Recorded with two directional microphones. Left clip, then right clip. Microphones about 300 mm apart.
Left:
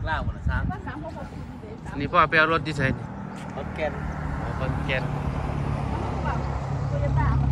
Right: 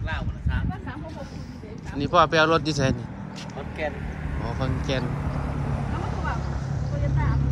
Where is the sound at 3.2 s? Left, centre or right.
Centre.